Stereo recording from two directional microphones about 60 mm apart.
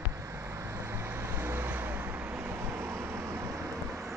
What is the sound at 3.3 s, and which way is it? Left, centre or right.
Vehicle, right.